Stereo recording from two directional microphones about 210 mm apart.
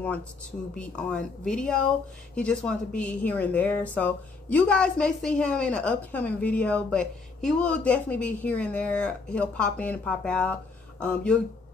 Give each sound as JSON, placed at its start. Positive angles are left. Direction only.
{"t": 0.7, "sound": "a woman's voice", "side_deg": 5}